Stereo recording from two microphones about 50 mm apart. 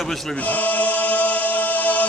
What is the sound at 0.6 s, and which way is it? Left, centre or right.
Chant, left.